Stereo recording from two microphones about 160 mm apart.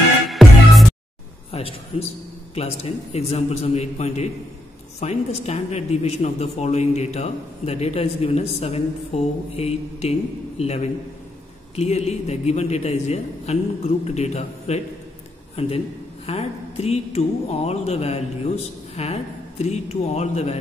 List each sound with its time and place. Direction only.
0.3 s music: centre (ahead or behind)
1.5 s a man's voice: 35° left (ahead or behind)
16.3 s a man's voice: 40° left (ahead or behind)